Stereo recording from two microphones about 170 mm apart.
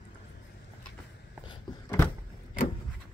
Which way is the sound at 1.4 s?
30° left (ahead or behind).